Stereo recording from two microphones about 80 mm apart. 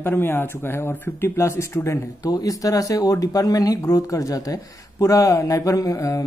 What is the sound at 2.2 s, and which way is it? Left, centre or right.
Speech, left.